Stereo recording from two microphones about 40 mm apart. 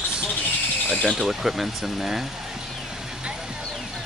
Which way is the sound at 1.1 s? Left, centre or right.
Centre.